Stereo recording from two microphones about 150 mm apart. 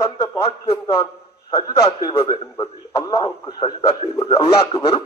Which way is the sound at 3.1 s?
35° left (ahead or behind).